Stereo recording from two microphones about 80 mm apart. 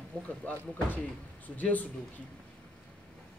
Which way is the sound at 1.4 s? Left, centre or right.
Centre.